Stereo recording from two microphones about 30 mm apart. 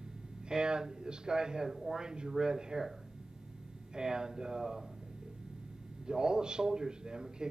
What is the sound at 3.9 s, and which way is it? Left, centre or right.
Speech, right.